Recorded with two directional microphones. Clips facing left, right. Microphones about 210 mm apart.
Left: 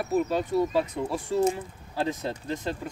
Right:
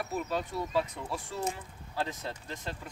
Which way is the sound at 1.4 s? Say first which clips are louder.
Left 9 dB; 25° left (ahead or behind).